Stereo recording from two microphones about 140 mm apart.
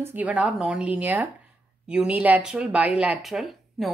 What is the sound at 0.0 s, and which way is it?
Speech, 10° right (ahead or behind).